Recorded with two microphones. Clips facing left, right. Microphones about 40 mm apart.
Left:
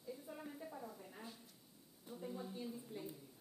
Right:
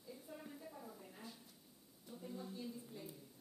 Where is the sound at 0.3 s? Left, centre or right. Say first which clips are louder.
Left 3 dB; centre.